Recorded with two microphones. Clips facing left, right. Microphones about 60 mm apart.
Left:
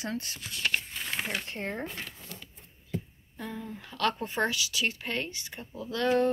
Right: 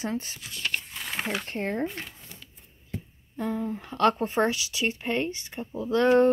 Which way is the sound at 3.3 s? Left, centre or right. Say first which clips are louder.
Right 9 dB; right.